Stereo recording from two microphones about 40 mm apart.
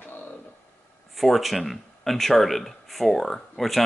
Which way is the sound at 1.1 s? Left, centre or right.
Centre.